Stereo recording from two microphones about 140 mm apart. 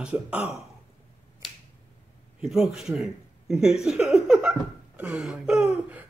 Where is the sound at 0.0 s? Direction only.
10° right (ahead or behind).